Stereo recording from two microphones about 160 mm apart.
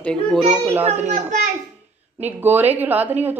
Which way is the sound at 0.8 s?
45° right (ahead or behind).